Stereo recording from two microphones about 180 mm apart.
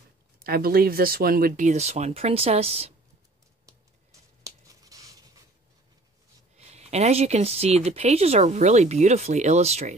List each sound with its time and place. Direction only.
0.4 s speech: 55° right (ahead or behind); by 2.9 s 35° right (ahead or behind)
3.6 s a sound: 20° right (ahead or behind)
6.5 s speech: 35° right (ahead or behind)